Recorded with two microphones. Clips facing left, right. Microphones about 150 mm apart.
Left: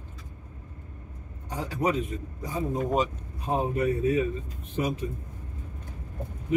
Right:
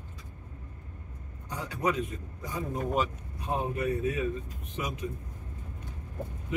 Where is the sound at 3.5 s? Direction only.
30° left (ahead or behind).